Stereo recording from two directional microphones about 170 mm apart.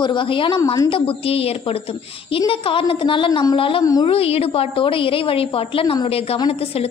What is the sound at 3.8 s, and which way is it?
Speech, 20° left (ahead or behind).